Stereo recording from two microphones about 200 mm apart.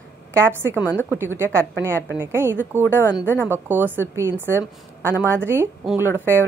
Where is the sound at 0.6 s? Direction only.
10° right (ahead or behind).